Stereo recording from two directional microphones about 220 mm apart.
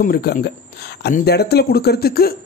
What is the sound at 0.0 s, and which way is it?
Speech, 45° left (ahead or behind).